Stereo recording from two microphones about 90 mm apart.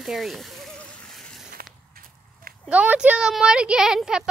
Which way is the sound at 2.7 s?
15° right (ahead or behind).